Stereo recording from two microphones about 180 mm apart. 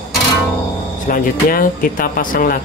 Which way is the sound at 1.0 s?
50° left (ahead or behind).